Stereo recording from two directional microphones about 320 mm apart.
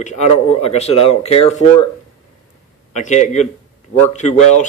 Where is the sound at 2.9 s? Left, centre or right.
Left.